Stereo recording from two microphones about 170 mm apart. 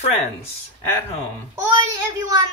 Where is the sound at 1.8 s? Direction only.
20° right (ahead or behind).